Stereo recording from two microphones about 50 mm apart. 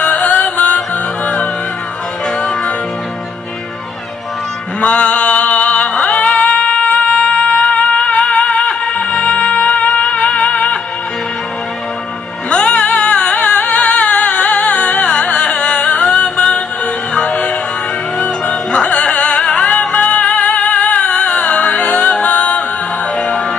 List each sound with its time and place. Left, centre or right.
0.0 s music: left
4.8 s mantra: left
6.0 s music: left
12.4 s music: left
21.2 s music: centre
21.5 s music: left